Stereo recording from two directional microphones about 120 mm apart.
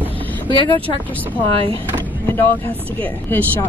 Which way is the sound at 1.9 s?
15° left (ahead or behind).